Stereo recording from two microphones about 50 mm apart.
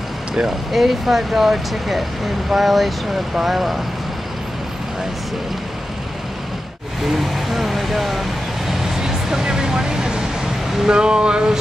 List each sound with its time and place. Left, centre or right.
0.7 s speech: centre
7.1 s vehicle: centre
10.9 s a sound: centre